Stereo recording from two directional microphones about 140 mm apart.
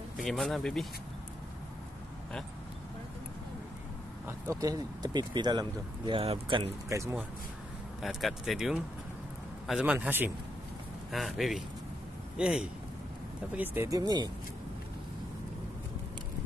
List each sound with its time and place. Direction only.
0.2 s speech: centre (ahead or behind)
4.3 s speech: 25° right (ahead or behind); by 6.7 s 40° right (ahead or behind)
6.9 s speech: 20° right (ahead or behind)
8.0 s a man's voice: centre (ahead or behind)
11.1 s speech: centre (ahead or behind)
13.8 s speech: 25° right (ahead or behind)